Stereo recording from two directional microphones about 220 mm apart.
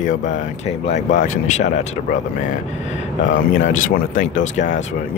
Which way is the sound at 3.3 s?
40° left (ahead or behind).